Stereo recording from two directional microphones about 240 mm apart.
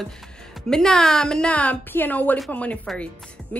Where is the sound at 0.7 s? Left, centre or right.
Centre.